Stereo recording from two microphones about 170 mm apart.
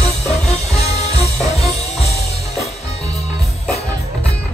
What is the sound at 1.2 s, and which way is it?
Music, 40° left (ahead or behind).